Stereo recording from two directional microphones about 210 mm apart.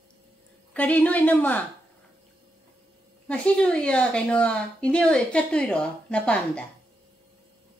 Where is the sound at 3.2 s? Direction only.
5° left (ahead or behind).